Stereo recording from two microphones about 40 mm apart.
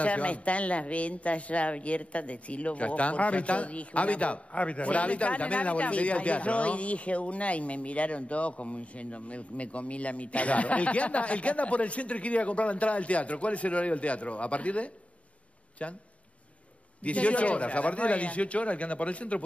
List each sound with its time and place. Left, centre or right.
0.0 s speech: left
17.0 s speech: left